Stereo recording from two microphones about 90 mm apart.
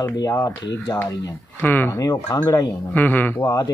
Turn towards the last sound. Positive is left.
turn(degrees=35)  # may be behind; listen again after turning